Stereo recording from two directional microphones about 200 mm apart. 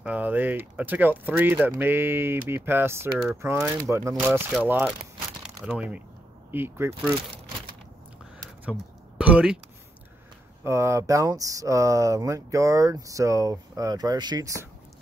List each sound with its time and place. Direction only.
0.0 s speech: 5° right (ahead or behind)
9.2 s speech: 5° right (ahead or behind)
10.6 s speech: 15° right (ahead or behind)